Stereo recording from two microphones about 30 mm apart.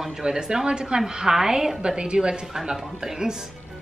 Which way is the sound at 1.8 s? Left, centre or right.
Right.